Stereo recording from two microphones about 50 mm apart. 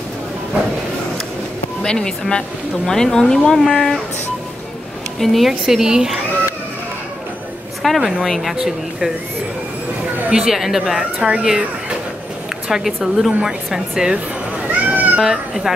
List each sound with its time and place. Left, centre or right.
1.8 s speech: centre
5.2 s a woman's voice: centre
5.5 s a woman's voice: centre
7.8 s a woman's voice: centre
10.3 s a woman's voice: centre
11.0 s a woman's voice: centre
12.6 s a woman's voice: centre
13.7 s a woman's voice: centre
14.7 s a sound: right
15.1 s a woman's voice: centre